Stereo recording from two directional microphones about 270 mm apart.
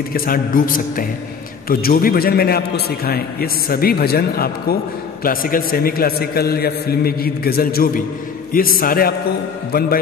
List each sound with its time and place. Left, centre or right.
0.1 s a man's voice: left